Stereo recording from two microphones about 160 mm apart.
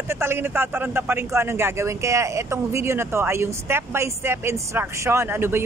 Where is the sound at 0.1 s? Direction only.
15° right (ahead or behind).